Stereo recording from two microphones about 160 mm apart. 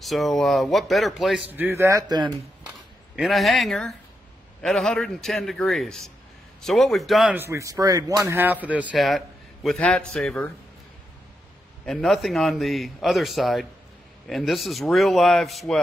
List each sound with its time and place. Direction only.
0.0 s a man's voice: centre (ahead or behind)
1.5 s speech: 15° right (ahead or behind)
3.2 s a man's voice: centre (ahead or behind)
7.3 s speech: 15° right (ahead or behind); by 10.5 s 5° left (ahead or behind)
11.8 s a man's voice: 5° left (ahead or behind)